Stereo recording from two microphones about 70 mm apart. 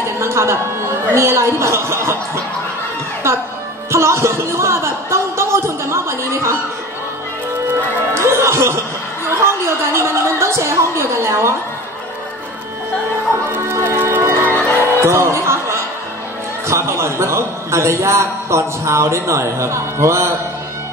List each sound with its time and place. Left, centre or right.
0.2 s a man's voice: right
3.9 s a sound: right
8.1 s music: right
9.3 s speech: right
13.5 s music: right
15.0 s a sound: right
16.6 s a man's voice: right